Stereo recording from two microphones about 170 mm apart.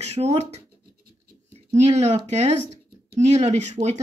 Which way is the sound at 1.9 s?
40° right (ahead or behind).